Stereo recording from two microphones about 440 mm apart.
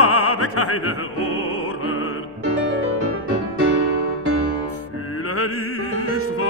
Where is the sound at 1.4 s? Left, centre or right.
Left.